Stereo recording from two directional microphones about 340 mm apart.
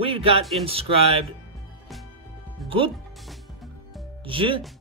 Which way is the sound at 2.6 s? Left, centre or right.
Centre.